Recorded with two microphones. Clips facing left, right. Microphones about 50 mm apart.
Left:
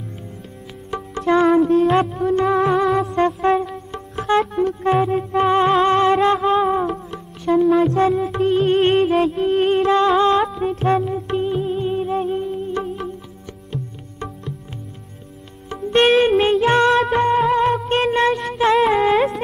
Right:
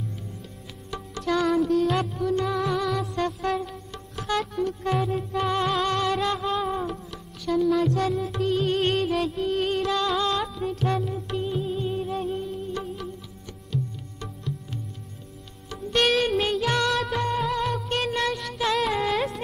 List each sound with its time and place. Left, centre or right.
0.8 s music: left
15.7 s music: left
19.1 s carnatic music: centre